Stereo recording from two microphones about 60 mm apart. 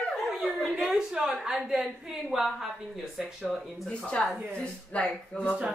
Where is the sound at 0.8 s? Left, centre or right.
Centre.